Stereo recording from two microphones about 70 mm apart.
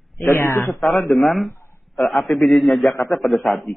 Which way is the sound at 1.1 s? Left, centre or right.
Centre.